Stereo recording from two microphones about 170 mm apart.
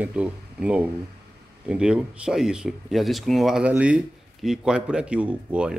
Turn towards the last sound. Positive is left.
turn(degrees=-5)  # may be behind; listen again after turning